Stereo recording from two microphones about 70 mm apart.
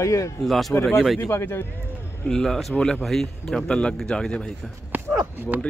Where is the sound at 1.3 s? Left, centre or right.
Left.